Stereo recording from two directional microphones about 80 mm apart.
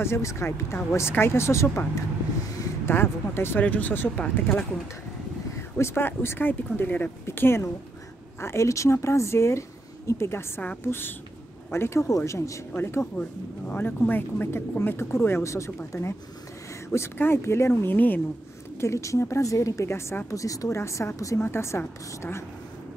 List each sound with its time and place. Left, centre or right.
0.0 s speech: left
5.8 s speech: left
10.6 s speech: centre
18.8 s speech: left